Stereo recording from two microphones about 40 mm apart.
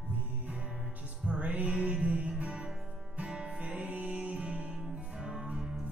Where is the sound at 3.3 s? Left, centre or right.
Right.